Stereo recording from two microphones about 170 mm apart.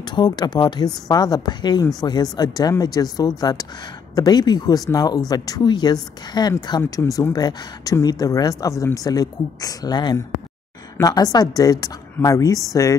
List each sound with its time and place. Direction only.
0.0 s speech: 25° left (ahead or behind)